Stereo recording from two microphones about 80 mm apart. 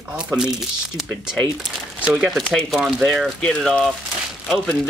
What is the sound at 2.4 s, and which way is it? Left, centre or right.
Speech, centre.